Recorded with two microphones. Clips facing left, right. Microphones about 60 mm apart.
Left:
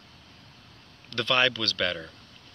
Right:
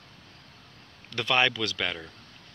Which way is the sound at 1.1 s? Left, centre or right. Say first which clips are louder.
Even; centre.